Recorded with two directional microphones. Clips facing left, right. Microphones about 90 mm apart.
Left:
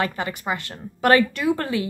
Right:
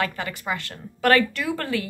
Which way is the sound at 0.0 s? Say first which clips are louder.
Left 2 dB; 20° left (ahead or behind).